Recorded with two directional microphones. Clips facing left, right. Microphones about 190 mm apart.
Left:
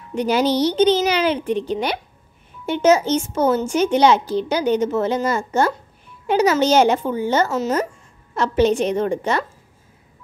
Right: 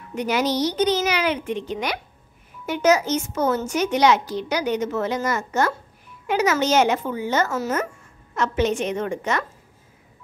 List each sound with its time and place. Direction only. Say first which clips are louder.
0.1 s a woman's voice: left 4 dB; 30° left (ahead or behind)
7.5 s a child's voice: left 4 dB; 20° left (ahead or behind)
8.4 s a woman's voice: left 5 dB; 35° left (ahead or behind)